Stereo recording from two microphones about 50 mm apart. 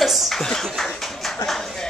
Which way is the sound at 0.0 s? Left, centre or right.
Centre.